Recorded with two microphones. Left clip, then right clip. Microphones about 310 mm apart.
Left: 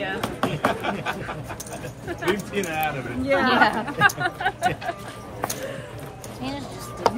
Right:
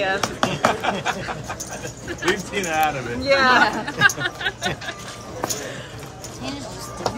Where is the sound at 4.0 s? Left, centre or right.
Centre.